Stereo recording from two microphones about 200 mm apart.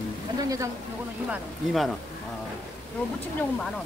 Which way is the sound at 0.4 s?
15° right (ahead or behind).